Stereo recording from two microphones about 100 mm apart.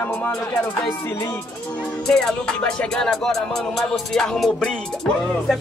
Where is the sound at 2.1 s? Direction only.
5° left (ahead or behind).